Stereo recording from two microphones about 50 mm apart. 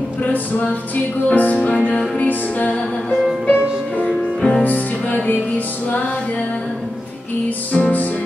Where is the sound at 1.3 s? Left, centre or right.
Left.